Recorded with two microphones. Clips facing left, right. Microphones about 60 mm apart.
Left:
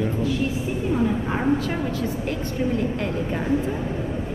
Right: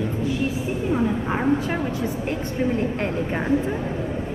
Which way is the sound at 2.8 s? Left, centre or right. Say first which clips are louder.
Right 1 dB; right.